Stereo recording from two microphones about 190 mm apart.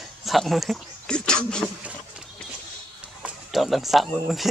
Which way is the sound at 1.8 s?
Centre (ahead or behind).